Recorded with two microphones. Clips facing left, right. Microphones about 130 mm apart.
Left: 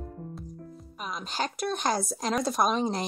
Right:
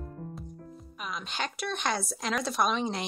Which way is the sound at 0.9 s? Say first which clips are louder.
Left 2 dB; 40° left (ahead or behind).